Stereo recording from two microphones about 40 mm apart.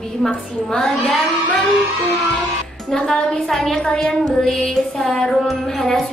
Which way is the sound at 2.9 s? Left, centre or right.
Centre.